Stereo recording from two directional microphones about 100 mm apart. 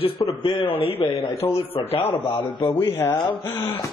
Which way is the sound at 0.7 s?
70° left (ahead or behind).